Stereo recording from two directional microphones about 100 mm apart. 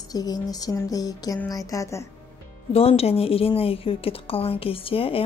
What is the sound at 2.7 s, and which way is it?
A woman's voice, 80° left.